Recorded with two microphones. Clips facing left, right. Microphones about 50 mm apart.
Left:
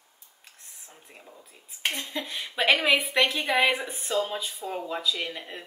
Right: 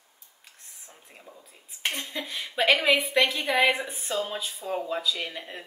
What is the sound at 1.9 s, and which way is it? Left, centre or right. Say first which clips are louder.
Speech: even; centre.